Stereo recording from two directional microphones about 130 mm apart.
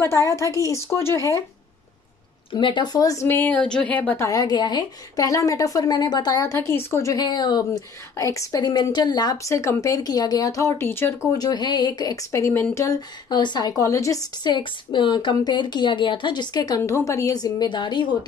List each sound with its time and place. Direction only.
0.0 s a woman's voice: 20° left (ahead or behind)
2.5 s a woman's voice: 35° left (ahead or behind); by 4.3 s 15° left (ahead or behind)
4.3 s a woman's voice: 30° left (ahead or behind)
11.3 s speech: 30° left (ahead or behind)